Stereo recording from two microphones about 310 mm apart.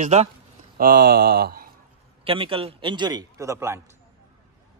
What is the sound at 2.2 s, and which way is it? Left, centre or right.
A man's voice, centre.